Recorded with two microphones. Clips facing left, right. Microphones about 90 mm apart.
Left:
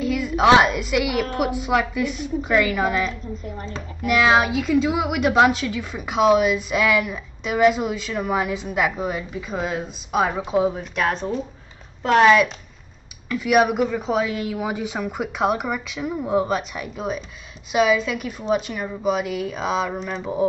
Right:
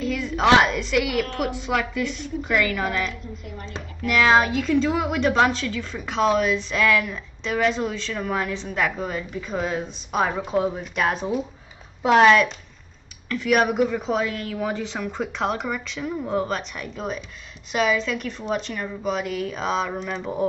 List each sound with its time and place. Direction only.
0.0 s a woman's voice: 10° left (ahead or behind)
3.1 s a woman's voice: 35° left (ahead or behind)
4.0 s a woman's voice: 10° left (ahead or behind)